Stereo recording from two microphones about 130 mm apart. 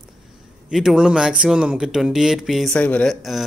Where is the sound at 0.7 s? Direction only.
5° right (ahead or behind).